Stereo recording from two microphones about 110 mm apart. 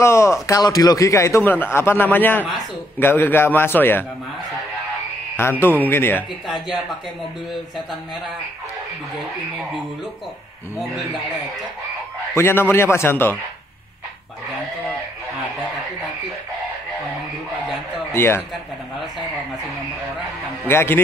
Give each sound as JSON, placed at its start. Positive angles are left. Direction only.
{"t": 0.0, "sound": "a man's voice", "side_deg": 25}
{"t": 5.4, "sound": "a man's voice", "side_deg": 20}
{"t": 6.4, "sound": "a man's voice", "side_deg": 0}
{"t": 12.4, "sound": "a man's voice", "side_deg": 20}
{"t": 18.1, "sound": "speech", "side_deg": 20}
{"t": 18.5, "sound": "a man's voice", "side_deg": 0}
{"t": 20.6, "sound": "a man's voice", "side_deg": 20}